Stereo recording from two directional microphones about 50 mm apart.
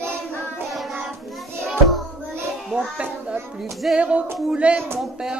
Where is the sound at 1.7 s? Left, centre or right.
Centre.